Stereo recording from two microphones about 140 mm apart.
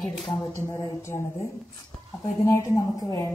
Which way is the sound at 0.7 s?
20° left (ahead or behind).